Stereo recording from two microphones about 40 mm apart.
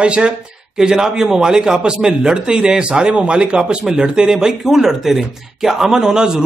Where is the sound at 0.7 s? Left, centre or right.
Centre.